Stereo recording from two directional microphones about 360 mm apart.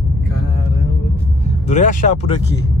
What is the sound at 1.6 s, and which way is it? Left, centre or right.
Speech, centre.